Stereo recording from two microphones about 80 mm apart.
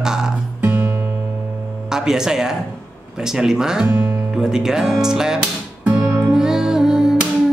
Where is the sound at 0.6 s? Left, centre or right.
Right.